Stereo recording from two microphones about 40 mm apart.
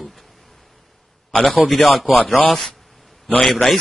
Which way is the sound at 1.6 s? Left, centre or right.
Centre.